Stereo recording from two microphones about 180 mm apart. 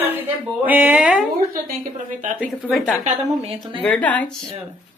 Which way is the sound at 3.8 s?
10° left (ahead or behind).